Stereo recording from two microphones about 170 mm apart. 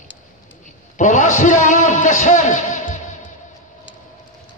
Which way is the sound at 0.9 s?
45° left (ahead or behind).